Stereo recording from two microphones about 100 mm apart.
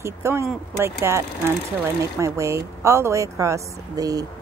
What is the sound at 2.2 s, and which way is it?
Speech, 30° right (ahead or behind).